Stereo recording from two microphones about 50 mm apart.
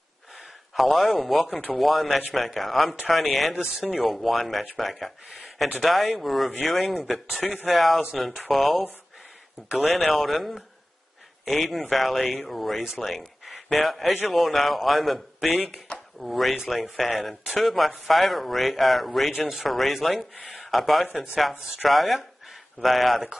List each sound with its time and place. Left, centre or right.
0.7 s speech: centre
20.3 s speech: left
20.6 s speech: centre